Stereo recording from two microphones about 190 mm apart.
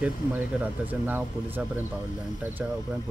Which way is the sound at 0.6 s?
10° right (ahead or behind).